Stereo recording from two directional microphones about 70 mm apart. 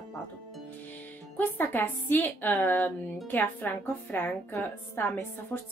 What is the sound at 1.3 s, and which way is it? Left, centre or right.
A woman's voice, left.